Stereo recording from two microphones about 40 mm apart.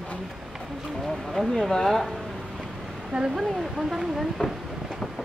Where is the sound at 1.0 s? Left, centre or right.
Centre.